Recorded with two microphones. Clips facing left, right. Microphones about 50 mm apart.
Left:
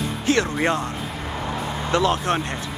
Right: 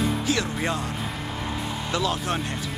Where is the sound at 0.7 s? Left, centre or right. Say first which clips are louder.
Left 4 dB; left.